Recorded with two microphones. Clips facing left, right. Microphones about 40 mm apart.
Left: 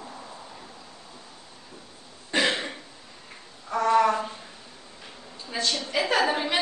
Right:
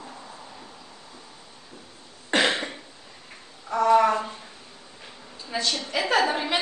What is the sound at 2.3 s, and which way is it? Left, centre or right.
Cough, right.